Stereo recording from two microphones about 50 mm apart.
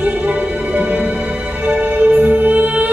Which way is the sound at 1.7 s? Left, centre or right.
Right.